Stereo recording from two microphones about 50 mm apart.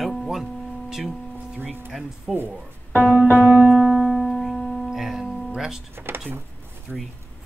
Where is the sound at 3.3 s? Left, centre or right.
Right.